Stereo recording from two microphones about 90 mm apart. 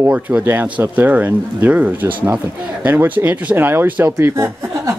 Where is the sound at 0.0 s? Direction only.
20° right (ahead or behind).